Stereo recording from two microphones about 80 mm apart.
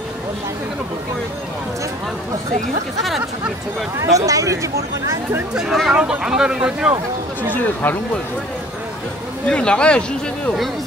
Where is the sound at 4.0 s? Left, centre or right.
Right.